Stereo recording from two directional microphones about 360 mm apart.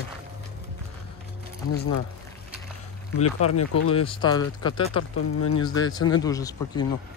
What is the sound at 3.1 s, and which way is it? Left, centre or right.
Speech, left.